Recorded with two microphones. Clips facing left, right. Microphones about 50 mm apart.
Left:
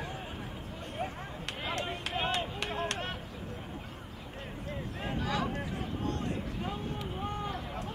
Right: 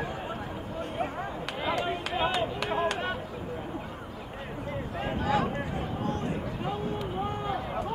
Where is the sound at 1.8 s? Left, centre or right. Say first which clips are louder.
Right 6 dB; centre.